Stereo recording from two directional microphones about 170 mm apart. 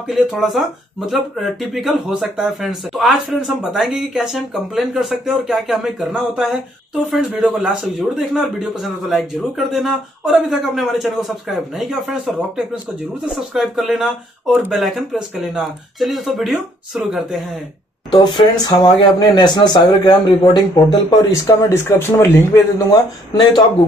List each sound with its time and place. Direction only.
0.1 s speech: centre (ahead or behind)
18.1 s speech: 25° left (ahead or behind)